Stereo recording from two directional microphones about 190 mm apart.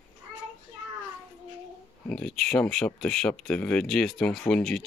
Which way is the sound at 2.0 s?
Centre (ahead or behind).